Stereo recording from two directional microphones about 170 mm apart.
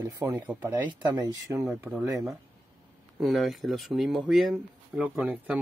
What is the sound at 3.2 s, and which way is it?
Speech, centre (ahead or behind).